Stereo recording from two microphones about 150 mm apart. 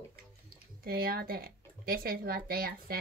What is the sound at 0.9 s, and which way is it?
Speech, 85° right.